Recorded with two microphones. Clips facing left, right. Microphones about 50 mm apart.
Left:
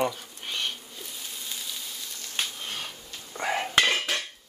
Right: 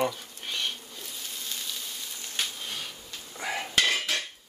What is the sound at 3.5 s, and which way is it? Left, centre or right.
Cutlery, centre.